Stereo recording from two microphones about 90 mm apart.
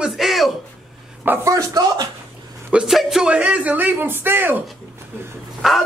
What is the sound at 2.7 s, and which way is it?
Speech, 5° right (ahead or behind).